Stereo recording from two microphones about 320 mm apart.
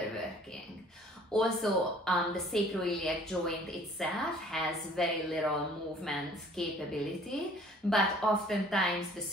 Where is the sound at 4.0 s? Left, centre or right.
Centre.